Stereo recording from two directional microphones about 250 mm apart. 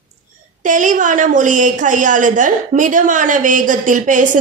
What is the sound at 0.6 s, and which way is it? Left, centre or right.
A woman's voice, right.